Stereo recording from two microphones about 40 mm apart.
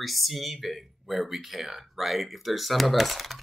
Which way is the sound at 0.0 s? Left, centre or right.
Centre.